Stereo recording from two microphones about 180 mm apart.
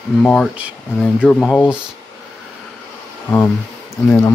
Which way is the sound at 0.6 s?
5° right (ahead or behind).